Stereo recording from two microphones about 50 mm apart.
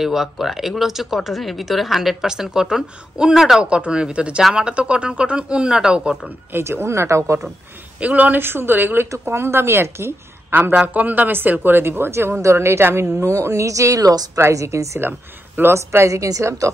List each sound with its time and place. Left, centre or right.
0.0 s speech: centre
3.6 s speech: right
6.6 s speech: right
8.0 s speech: right
8.4 s speech: right
9.0 s speech: right
10.9 s speech: right
12.4 s speech: right
13.2 s speech: right
15.0 s speech: right
15.7 s a woman's voice: right